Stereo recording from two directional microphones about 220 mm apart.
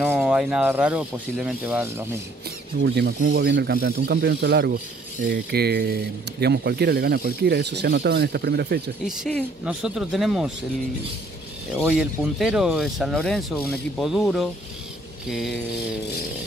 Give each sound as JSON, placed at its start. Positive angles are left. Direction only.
{"t": 0.0, "sound": "speech", "side_deg": -5}
{"t": 2.8, "sound": "speech", "side_deg": -50}
{"t": 9.0, "sound": "speech", "side_deg": 0}
{"t": 11.8, "sound": "speech", "side_deg": -5}